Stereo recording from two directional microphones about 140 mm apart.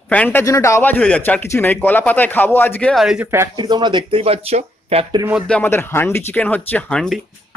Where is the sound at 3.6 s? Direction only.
35° right (ahead or behind).